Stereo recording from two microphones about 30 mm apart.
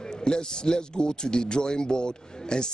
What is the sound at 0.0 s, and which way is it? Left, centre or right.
A man's voice, left.